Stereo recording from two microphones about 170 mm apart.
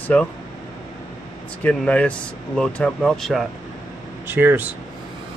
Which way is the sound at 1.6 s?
5° left (ahead or behind).